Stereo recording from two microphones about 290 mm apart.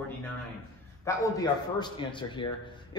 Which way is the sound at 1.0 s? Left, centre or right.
Centre.